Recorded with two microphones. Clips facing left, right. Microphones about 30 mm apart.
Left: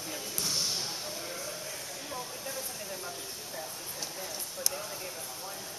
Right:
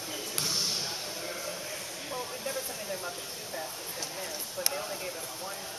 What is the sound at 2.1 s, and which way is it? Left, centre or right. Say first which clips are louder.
Speech: right 5 dB; centre.